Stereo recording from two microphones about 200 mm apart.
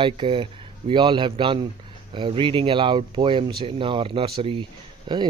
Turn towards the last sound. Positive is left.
turn(degrees=-25)  # may be behind; listen again after turning